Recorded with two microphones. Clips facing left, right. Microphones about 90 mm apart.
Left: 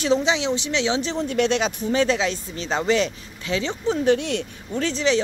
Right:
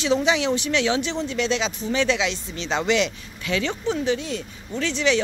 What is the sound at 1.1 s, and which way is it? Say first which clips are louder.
Speech: left 3 dB; 45° left (ahead or behind).